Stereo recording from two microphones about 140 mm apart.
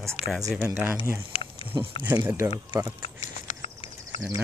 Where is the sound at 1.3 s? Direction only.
40° left (ahead or behind).